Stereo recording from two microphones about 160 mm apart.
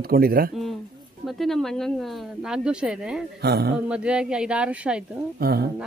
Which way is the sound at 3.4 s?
80° right.